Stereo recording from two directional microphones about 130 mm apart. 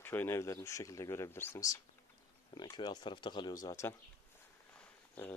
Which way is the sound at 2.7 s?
35° left (ahead or behind).